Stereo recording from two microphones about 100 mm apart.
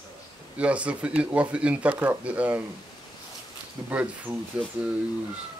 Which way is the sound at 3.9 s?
15° right (ahead or behind).